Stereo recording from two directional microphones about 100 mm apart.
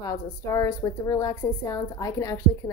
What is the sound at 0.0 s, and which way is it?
A woman's voice, 35° left (ahead or behind).